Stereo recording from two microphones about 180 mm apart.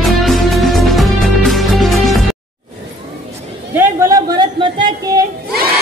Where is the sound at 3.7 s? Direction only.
15° right (ahead or behind).